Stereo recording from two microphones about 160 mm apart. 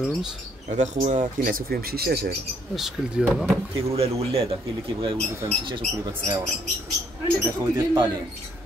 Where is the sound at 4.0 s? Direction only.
40° right (ahead or behind).